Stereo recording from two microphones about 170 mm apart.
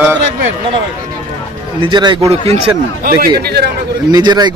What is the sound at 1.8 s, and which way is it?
Speech, 25° right (ahead or behind).